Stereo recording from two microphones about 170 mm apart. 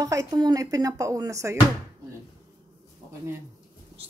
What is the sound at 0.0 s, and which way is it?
Speech, 20° right (ahead or behind).